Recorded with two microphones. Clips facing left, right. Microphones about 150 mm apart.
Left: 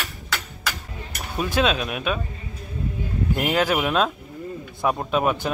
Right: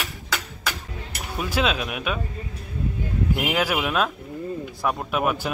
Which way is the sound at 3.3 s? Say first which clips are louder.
Left 3 dB; 10° right (ahead or behind).